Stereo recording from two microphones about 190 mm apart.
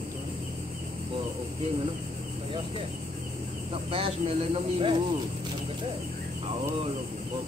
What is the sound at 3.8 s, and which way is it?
Speech, 30° right (ahead or behind).